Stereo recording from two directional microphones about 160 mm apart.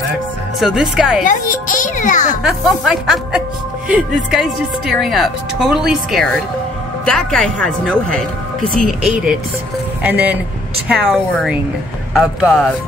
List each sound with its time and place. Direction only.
0.6 s speech: 5° right (ahead or behind)
1.2 s a child's voice: 55° left (ahead or behind)
2.4 s speech: centre (ahead or behind)
9.0 s speech: 5° right (ahead or behind)
11.1 s speech: centre (ahead or behind)